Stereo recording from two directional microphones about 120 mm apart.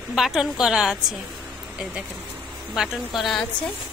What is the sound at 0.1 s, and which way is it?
Speech, 5° right (ahead or behind).